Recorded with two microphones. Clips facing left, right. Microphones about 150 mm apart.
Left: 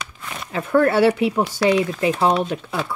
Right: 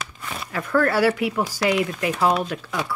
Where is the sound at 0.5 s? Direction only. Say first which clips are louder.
Left 4 dB; 25° left (ahead or behind).